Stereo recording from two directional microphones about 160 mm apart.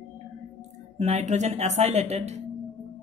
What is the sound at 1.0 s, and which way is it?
Speech, 45° right (ahead or behind).